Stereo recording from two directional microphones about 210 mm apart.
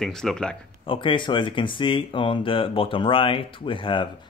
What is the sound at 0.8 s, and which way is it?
Speech, 25° left (ahead or behind).